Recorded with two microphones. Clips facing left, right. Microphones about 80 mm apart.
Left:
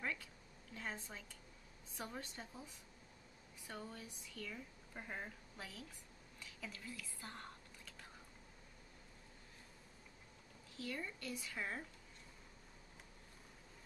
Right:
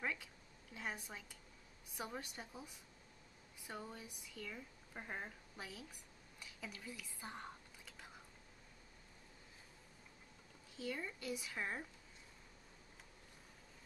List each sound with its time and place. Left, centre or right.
0.0 s a sound: centre
0.7 s speech: centre
6.4 s whispering: centre
10.8 s speech: centre